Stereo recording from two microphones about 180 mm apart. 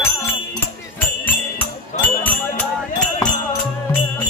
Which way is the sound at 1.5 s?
10° left (ahead or behind).